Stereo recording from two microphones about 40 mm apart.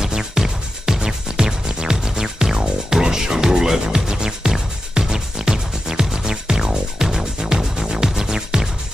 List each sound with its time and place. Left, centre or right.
0.0 s music: centre